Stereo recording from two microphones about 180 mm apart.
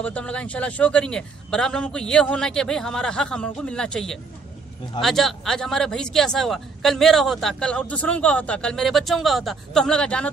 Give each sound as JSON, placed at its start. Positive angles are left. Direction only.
{"t": 0.0, "sound": "speech", "side_deg": 5}